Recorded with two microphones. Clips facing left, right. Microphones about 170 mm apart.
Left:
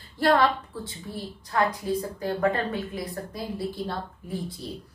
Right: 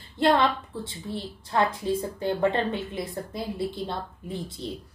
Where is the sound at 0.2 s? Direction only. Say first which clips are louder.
Even; 20° right (ahead or behind).